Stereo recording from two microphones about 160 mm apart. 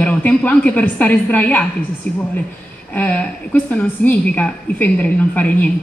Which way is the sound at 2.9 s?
10° left (ahead or behind).